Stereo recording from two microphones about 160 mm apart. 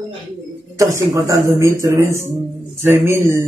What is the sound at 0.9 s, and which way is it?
Speech, 20° right (ahead or behind).